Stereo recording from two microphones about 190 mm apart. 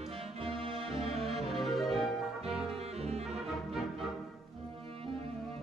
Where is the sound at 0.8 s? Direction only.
30° right (ahead or behind).